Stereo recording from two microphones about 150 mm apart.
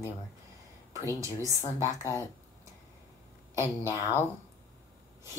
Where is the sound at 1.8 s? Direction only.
20° left (ahead or behind).